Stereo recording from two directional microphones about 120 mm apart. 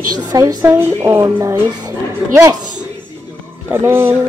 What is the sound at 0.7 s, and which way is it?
Speech, 15° right (ahead or behind).